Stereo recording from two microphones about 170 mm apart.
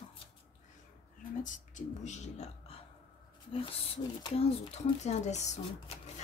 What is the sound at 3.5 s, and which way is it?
Speech, 35° left (ahead or behind).